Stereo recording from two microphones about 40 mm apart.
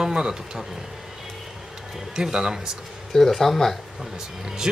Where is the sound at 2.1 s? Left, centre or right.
Centre.